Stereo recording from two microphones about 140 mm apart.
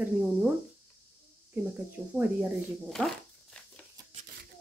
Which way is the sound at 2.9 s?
5° left (ahead or behind).